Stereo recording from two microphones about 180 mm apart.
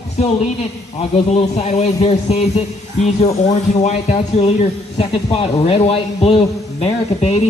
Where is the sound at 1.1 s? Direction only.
35° left (ahead or behind).